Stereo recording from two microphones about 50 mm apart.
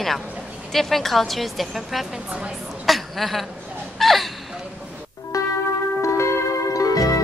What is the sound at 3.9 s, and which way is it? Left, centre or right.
Speech, centre.